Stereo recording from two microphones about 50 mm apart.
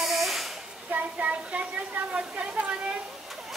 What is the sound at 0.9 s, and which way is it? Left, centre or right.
Speech, right.